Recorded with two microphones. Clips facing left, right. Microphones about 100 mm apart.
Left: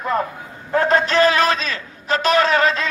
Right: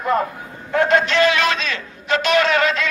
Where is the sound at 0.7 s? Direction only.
35° left (ahead or behind).